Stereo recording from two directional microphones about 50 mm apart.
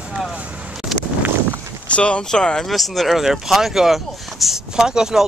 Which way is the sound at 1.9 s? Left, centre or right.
Left.